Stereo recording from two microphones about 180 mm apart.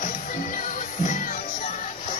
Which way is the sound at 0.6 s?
45° left (ahead or behind).